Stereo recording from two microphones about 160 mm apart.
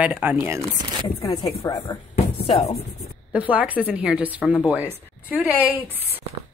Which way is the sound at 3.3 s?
10° right (ahead or behind).